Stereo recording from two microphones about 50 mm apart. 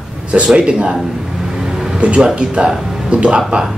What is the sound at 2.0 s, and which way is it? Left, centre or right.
Speech, right.